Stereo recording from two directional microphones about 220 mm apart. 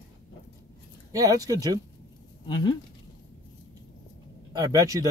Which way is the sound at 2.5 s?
20° left (ahead or behind).